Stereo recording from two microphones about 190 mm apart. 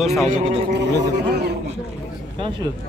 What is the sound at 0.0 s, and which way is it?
Speech, centre (ahead or behind).